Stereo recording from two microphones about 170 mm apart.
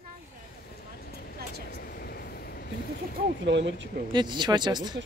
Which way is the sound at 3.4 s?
90° right.